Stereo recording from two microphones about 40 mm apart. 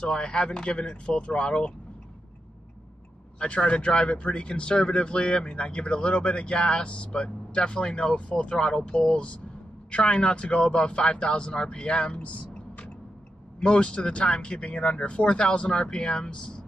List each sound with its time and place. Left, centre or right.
0.0 s speech: left
3.3 s speech: left
12.2 s a sound: left
13.6 s speech: left